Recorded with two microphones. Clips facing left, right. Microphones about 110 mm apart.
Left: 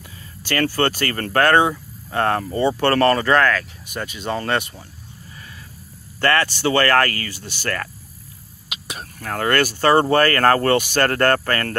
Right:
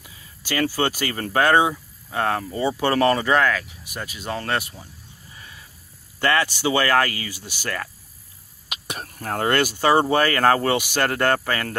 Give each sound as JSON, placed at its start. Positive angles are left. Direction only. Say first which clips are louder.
{"t": 0.4, "sound": "speech", "louder": "left 3 dB", "side_deg": -10}
{"t": 6.2, "sound": "speech", "louder": "left 2 dB", "side_deg": -15}
{"t": 8.6, "sound": "whispering", "louder": "right 1 dB", "side_deg": -50}
{"t": 9.2, "sound": "speech", "louder": "left 1 dB", "side_deg": -25}